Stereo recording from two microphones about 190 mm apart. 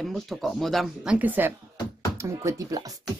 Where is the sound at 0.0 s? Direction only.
Centre (ahead or behind).